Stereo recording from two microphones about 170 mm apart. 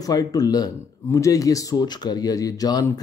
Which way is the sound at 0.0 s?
20° left (ahead or behind).